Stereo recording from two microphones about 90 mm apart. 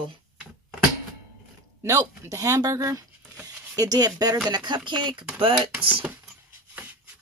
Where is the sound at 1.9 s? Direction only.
35° right (ahead or behind); by 5.1 s 55° right (ahead or behind).